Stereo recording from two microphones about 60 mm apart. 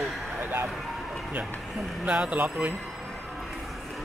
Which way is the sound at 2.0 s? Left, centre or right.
Centre.